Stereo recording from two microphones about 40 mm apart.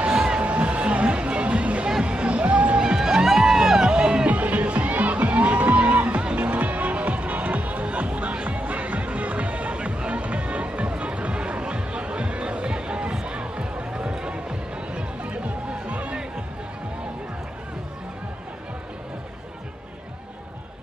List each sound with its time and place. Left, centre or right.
0.2 s music: right
1.9 s music: centre
2.1 s music: right
2.8 s music: centre
4.3 s music: right